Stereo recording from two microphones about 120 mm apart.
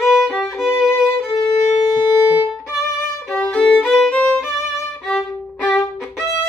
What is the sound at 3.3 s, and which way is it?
Violin, 10° left (ahead or behind).